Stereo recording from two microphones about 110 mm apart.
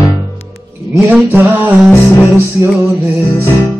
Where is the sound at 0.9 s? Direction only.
10° right (ahead or behind).